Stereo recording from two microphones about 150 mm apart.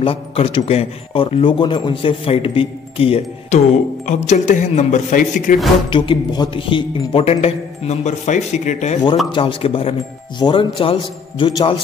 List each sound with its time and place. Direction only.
0.0 s speech: 35° left (ahead or behind)
4.1 s a man's voice: 55° left (ahead or behind)
5.9 s speech: 30° left (ahead or behind); by 8.9 s 50° left (ahead or behind)
9.3 s speech: 35° left (ahead or behind)